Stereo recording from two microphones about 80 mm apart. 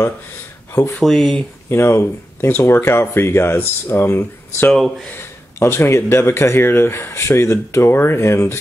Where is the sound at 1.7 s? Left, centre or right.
Left.